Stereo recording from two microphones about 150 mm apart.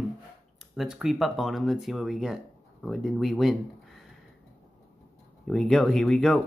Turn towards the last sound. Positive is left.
turn(degrees=0)  # may be behind; listen again after turning